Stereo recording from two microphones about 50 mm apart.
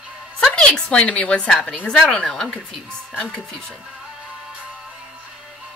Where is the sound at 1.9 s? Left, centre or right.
Centre.